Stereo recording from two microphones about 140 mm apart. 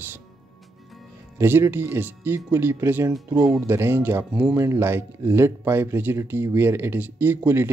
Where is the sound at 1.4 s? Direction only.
15° right (ahead or behind).